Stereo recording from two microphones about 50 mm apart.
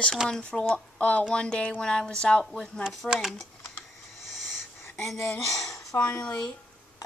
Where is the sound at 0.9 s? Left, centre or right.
Left.